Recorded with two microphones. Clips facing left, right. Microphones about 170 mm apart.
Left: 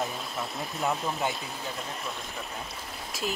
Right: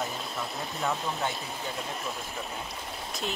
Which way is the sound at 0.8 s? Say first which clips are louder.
Left 2 dB; centre (ahead or behind).